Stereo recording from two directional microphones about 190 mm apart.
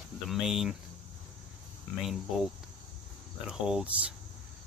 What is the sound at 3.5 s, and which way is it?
Speech, 5° right (ahead or behind).